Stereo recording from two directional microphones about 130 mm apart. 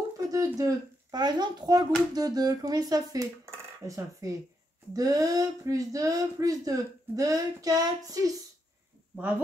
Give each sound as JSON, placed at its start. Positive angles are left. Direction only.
{"t": 0.3, "sound": "speech", "side_deg": -25}